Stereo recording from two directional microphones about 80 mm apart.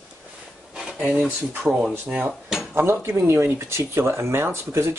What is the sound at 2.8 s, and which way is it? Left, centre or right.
Speech, right.